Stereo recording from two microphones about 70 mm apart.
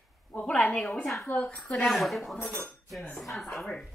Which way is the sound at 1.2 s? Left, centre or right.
Centre.